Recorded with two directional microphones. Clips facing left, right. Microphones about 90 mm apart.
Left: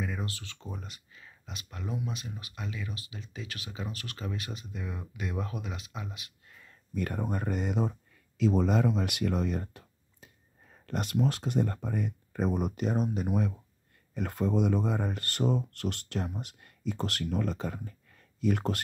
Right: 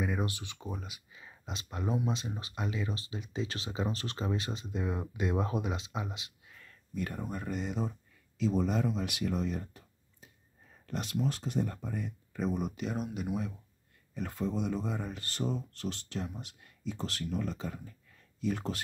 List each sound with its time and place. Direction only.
0.0 s speech: 15° right (ahead or behind)
0.7 s speech: 5° right (ahead or behind)
1.2 s speech: 25° right (ahead or behind)
6.9 s speech: 60° left (ahead or behind)
8.4 s speech: 70° left (ahead or behind); by 13.3 s 40° left (ahead or behind)
14.1 s speech: 60° left (ahead or behind)